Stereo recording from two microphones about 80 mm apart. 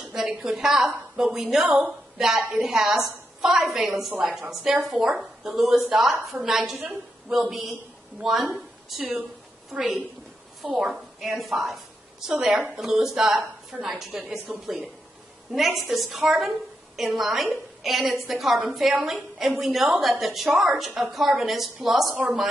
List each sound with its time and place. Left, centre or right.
0.0 s a woman's voice: centre
1.7 s a woman's voice: centre
2.1 s a woman's voice: centre
9.7 s a woman's voice: centre